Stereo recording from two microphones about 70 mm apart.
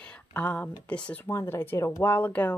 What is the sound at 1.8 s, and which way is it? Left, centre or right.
Speech, left.